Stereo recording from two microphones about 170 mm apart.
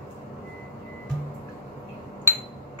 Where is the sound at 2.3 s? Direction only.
15° left (ahead or behind).